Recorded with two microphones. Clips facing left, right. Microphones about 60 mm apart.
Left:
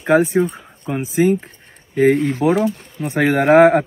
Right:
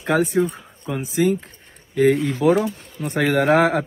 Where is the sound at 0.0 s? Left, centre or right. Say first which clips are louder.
Left 4 dB; left.